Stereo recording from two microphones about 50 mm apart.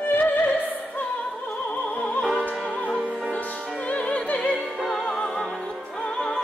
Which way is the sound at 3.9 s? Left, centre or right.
Left.